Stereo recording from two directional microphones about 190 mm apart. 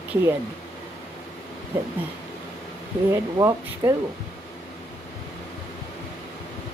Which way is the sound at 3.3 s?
20° right (ahead or behind).